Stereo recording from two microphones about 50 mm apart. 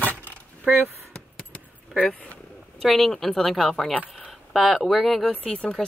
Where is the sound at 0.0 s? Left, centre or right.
Left.